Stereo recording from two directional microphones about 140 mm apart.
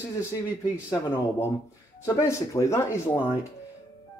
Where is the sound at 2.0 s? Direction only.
20° left (ahead or behind).